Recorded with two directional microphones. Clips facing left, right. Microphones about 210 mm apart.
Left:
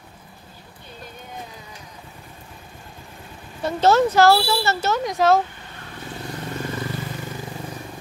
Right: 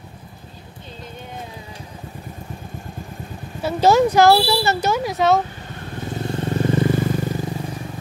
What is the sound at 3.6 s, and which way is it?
Speech, 10° right (ahead or behind).